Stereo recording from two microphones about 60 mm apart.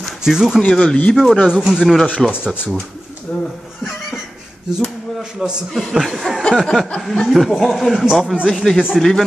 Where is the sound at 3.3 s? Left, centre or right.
Centre.